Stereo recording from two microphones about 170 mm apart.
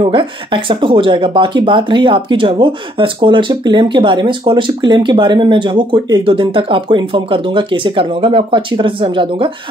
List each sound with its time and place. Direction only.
0.0 s speech: 30° right (ahead or behind)